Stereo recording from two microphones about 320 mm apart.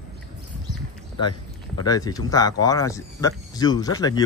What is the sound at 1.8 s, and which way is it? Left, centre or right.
Speech, centre.